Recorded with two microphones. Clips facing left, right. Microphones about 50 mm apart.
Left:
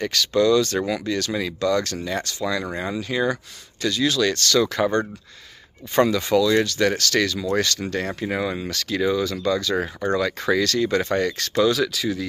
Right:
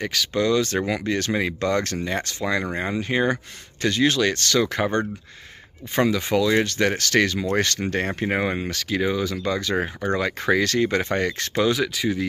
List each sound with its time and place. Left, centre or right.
0.0 s speech: centre
5.9 s speech: centre; by 8.7 s right
8.7 s speech: centre